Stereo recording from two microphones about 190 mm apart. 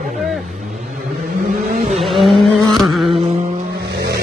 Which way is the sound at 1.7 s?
45° right (ahead or behind).